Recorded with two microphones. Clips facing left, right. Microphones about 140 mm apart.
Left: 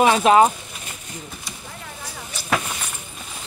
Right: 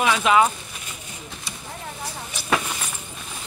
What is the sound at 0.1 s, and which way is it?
Speech, 40° left (ahead or behind).